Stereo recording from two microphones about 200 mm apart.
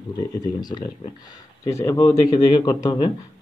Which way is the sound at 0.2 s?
20° left (ahead or behind).